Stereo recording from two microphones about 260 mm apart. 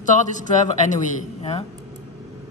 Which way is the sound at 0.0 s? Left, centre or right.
Left.